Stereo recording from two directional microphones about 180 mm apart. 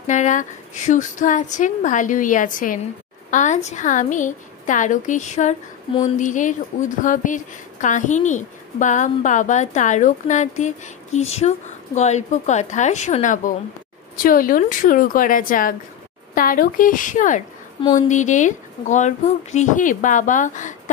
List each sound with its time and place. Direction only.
0.0 s speech: 40° left (ahead or behind)